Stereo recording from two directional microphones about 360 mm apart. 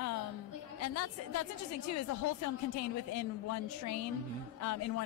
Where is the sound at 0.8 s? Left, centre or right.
Left.